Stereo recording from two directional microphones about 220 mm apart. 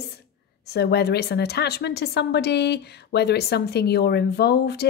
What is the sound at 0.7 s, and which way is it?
A woman's voice, 45° left (ahead or behind).